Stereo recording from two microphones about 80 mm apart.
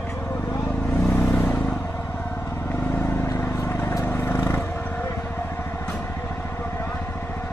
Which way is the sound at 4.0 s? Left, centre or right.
Left.